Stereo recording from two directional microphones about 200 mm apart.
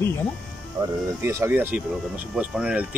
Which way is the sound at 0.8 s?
20° right (ahead or behind).